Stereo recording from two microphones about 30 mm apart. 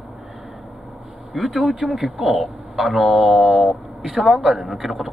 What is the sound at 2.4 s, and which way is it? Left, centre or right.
Speech, centre.